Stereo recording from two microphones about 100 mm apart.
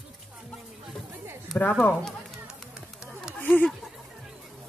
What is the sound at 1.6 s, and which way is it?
Speech, 15° left (ahead or behind).